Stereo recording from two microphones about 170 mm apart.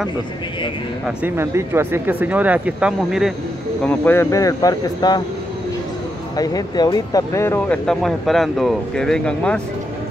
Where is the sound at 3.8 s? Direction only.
10° left (ahead or behind).